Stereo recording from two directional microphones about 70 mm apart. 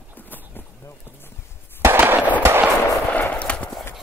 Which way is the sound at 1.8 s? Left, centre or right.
Right.